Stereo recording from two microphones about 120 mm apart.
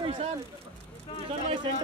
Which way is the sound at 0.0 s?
50° right (ahead or behind).